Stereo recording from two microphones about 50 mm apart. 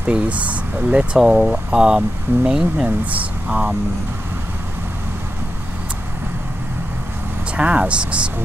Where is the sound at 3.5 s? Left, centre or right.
Centre.